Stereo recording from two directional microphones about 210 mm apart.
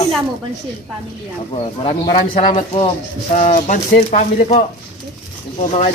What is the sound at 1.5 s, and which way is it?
Speech, 25° left (ahead or behind).